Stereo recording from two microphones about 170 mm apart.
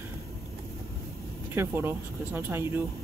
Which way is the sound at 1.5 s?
15° right (ahead or behind).